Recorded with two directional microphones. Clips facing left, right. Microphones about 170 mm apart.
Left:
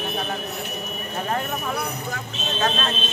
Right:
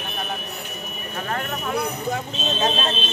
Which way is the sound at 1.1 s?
25° left (ahead or behind).